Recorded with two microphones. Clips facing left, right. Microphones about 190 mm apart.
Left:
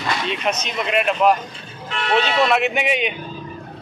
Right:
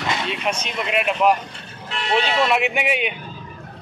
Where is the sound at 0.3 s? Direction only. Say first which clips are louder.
Left 2 dB; 5° right (ahead or behind).